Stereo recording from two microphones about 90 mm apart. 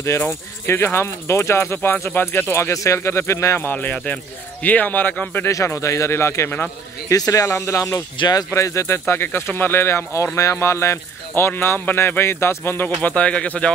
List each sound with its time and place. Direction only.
0.0 s speech: 30° left (ahead or behind)
5.5 s speech: 35° left (ahead or behind)
7.1 s speech: 40° left (ahead or behind)
8.2 s speech: 45° left (ahead or behind)
8.5 s speech: 35° left (ahead or behind); by 13.7 s 15° left (ahead or behind)